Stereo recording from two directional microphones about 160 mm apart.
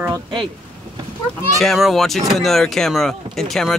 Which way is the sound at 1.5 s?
Centre (ahead or behind).